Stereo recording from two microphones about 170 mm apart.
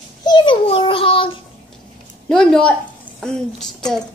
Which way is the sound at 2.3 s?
5° left (ahead or behind).